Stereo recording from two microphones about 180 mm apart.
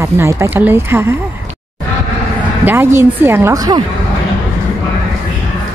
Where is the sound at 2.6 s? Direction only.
15° right (ahead or behind).